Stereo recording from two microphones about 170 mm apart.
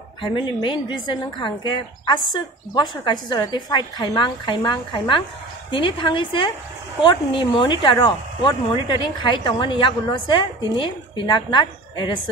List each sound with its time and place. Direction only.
0.2 s speech: 30° left (ahead or behind)